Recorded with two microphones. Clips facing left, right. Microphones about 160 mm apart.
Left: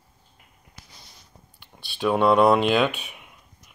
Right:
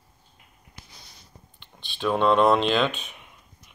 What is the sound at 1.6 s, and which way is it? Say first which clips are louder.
Speech: left 3 dB; 10° left (ahead or behind).